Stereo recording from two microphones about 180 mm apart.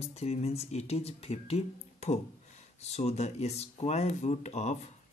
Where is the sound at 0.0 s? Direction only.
35° left (ahead or behind).